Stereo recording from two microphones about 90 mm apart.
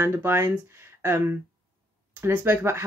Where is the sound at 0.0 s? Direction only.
25° right (ahead or behind).